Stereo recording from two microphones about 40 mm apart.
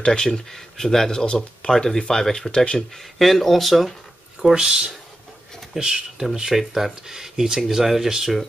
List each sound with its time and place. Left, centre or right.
0.0 s speech: centre
1.2 s speech: left
1.7 s speech: centre
2.5 s speech: left
3.0 s speech: centre
4.4 s speech: centre
7.6 s speech: centre